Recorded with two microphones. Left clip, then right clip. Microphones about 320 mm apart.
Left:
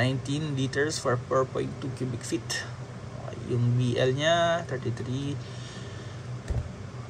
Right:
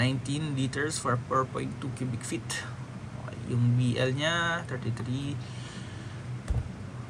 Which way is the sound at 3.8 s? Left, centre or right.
Centre.